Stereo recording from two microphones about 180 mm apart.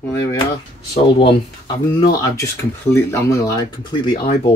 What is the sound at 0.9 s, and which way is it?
Speech, 30° left (ahead or behind).